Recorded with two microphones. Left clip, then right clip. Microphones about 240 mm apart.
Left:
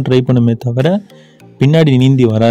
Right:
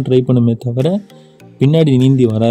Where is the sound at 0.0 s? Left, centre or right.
Centre.